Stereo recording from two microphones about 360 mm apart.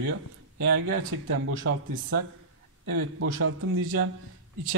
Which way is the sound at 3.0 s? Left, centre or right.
Right.